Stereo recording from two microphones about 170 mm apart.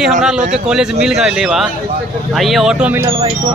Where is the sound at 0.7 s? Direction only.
5° right (ahead or behind).